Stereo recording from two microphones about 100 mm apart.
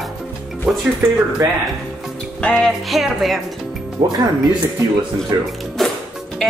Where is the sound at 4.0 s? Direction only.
35° right (ahead or behind).